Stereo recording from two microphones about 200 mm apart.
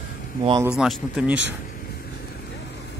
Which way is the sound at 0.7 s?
Centre (ahead or behind).